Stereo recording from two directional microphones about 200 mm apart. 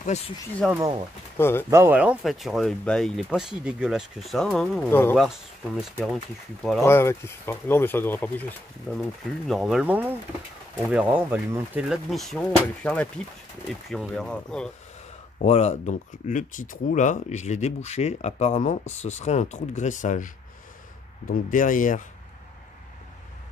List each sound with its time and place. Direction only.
0.0 s speech: 35° left (ahead or behind)
0.7 s speech: 20° right (ahead or behind)
1.4 s speech: 10° left (ahead or behind)
1.7 s speech: 10° right (ahead or behind)
6.8 s speech: 15° left (ahead or behind)
15.3 s speech: 35° left (ahead or behind)
21.3 s speech: 40° left (ahead or behind)